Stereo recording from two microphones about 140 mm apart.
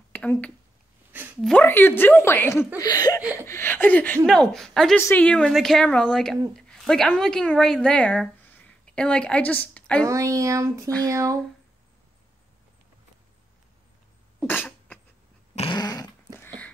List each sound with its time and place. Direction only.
0.1 s speech: 10° left (ahead or behind)
2.8 s a sound: 25° left (ahead or behind)
3.4 s a woman's voice: 15° left (ahead or behind)
10.0 s speech: 25° right (ahead or behind)
14.4 s cough: 15° left (ahead or behind)
15.7 s dog: 25° left (ahead or behind)
16.3 s a sound: 10° left (ahead or behind)